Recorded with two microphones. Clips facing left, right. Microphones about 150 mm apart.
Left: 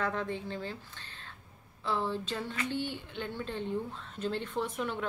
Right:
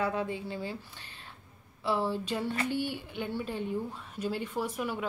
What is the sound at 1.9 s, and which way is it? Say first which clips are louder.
A woman's voice: right 3 dB; 15° right (ahead or behind).